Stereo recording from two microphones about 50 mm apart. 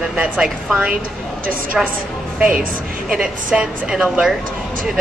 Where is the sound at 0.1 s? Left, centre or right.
Centre.